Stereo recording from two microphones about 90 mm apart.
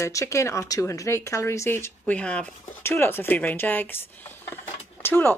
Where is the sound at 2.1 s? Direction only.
10° left (ahead or behind).